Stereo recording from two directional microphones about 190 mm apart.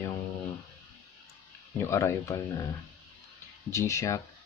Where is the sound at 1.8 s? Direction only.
15° left (ahead or behind).